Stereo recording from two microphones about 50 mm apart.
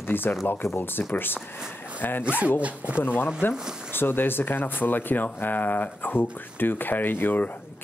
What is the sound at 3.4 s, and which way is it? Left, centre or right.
Speech, left.